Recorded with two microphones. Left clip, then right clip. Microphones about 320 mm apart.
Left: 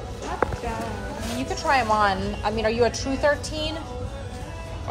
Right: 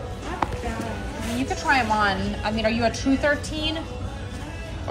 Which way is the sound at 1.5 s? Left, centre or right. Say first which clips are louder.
Even; centre.